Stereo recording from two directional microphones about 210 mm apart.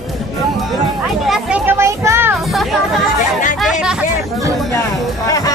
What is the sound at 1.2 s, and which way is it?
Children playing, 5° right (ahead or behind).